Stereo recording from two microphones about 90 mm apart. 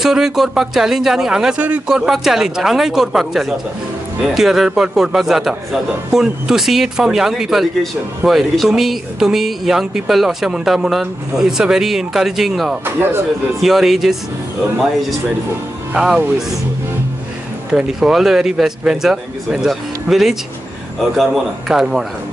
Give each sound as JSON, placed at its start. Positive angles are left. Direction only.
{"t": 0.0, "sound": "speech", "side_deg": -5}
{"t": 12.8, "sound": "speech", "side_deg": -25}
{"t": 13.6, "sound": "speech", "side_deg": -5}
{"t": 15.9, "sound": "speech", "side_deg": -5}
{"t": 17.6, "sound": "speech", "side_deg": -10}